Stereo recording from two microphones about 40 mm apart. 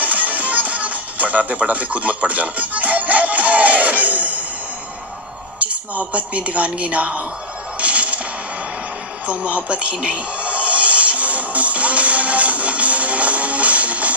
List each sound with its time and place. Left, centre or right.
0.0 s music: right
5.6 s speech: right
7.8 s whip: right
9.2 s speech: right
10.0 s music: right